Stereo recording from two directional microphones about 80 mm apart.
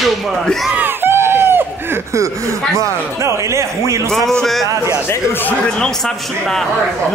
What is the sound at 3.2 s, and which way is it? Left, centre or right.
Speech, right.